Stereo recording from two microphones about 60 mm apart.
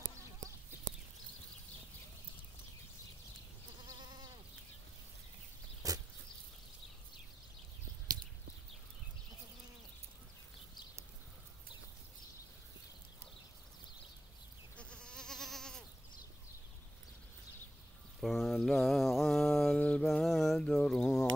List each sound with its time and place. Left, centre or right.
5.8 s goat: right
14.8 s goat: centre
18.2 s mantra: centre
20.0 s a sound: centre